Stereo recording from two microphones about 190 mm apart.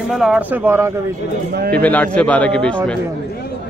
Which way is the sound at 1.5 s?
55° right (ahead or behind).